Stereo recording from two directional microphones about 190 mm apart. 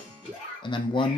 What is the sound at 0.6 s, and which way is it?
Speech, 25° left (ahead or behind).